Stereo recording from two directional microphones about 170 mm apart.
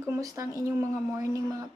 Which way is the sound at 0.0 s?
20° right (ahead or behind).